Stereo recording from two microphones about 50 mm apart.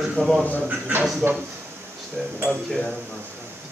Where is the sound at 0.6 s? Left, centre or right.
Right.